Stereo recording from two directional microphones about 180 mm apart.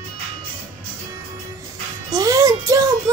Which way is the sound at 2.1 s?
20° right (ahead or behind).